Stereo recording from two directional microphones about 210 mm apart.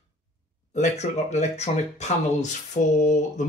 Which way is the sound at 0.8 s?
30° left (ahead or behind).